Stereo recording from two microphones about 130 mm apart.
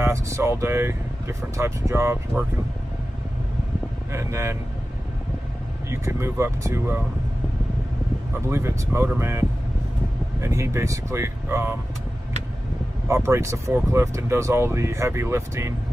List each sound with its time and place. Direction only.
0.0 s speech: 20° right (ahead or behind)
4.1 s speech: 20° right (ahead or behind)
5.9 s speech: 20° right (ahead or behind)
8.5 s speech: 20° right (ahead or behind)
13.1 s speech: 20° right (ahead or behind)